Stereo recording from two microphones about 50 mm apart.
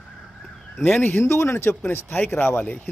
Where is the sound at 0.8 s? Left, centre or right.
Left.